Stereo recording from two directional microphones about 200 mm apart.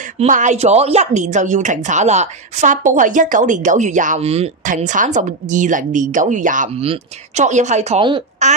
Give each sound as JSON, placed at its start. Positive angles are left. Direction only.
{"t": 0.2, "sound": "a woman's voice", "side_deg": -35}